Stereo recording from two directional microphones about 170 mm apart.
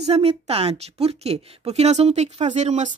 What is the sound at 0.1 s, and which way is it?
A woman's voice, 35° right (ahead or behind).